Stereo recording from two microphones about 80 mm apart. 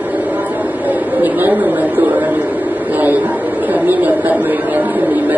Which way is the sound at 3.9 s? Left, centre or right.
Right.